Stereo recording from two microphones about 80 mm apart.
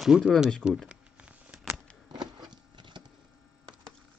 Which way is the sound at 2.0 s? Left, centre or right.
Right.